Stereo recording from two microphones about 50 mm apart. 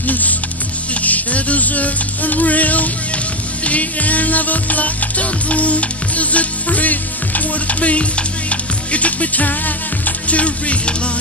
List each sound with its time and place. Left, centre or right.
0.0 s music: left